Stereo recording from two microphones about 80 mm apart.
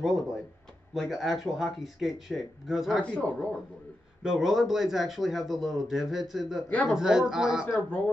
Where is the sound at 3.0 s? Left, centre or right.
Centre.